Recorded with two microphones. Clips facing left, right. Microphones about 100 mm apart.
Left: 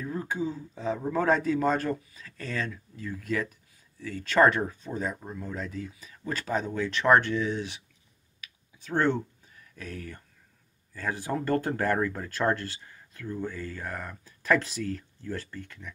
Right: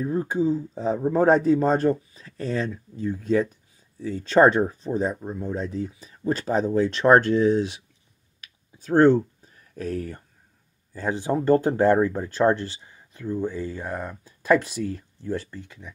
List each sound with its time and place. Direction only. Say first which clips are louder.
0.0 s speech: right 8 dB; 30° right (ahead or behind)
8.7 s speech: right 10 dB; 40° right (ahead or behind)
10.9 s speech: right 6 dB; 25° right (ahead or behind)